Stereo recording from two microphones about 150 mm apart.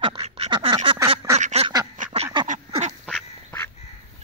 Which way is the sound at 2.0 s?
60° right (ahead or behind).